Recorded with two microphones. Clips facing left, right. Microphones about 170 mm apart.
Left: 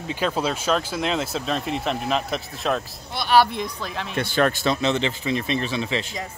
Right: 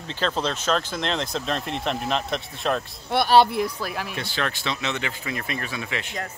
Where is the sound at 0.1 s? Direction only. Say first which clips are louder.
Left 2 dB; 10° left (ahead or behind).